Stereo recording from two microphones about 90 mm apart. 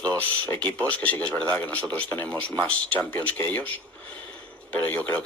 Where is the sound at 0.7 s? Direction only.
15° left (ahead or behind).